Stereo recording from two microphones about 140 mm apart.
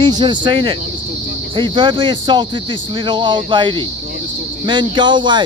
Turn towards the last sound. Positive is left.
turn(degrees=-35)  # may be behind; listen again after turning